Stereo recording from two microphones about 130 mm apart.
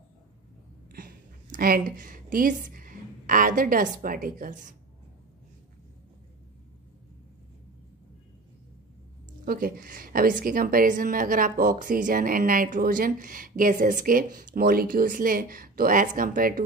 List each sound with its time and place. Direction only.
1.9 s a woman's voice: 90° right
9.4 s a woman's voice: 90° right